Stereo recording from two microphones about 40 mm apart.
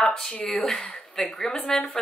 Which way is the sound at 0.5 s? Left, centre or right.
Centre.